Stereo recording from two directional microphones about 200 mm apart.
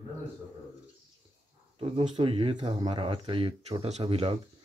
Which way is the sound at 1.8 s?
30° right (ahead or behind).